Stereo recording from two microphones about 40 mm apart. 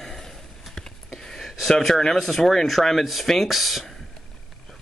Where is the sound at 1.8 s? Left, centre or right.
Centre.